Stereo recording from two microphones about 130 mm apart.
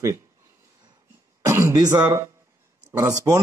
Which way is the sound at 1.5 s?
25° right (ahead or behind).